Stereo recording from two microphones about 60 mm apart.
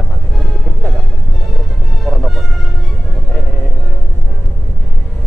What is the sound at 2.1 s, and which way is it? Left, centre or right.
Music, centre.